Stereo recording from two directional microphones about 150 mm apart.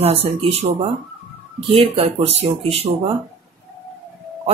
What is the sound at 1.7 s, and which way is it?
Speech, 40° right (ahead or behind).